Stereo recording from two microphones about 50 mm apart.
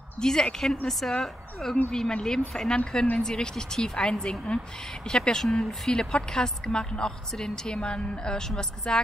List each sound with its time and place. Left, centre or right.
0.2 s a woman's voice: centre